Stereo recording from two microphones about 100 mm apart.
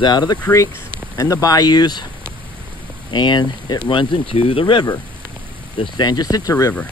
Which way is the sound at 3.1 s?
50° left (ahead or behind).